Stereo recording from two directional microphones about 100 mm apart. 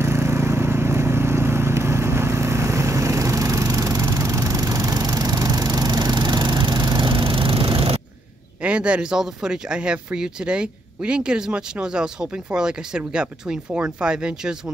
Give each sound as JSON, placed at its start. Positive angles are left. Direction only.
{"t": 0.0, "sound": "vehicle", "side_deg": -25}
{"t": 8.6, "sound": "speech", "side_deg": -10}